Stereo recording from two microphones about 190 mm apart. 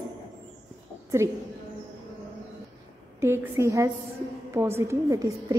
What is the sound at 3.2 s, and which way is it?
A woman's voice, 15° right (ahead or behind).